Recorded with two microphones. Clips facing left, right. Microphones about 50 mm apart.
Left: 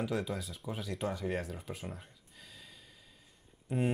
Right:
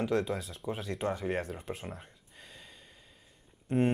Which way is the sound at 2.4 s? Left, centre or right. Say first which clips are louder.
Right 2 dB; centre.